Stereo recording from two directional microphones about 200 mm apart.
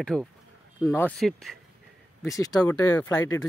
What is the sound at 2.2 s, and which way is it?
Speech, 15° left (ahead or behind).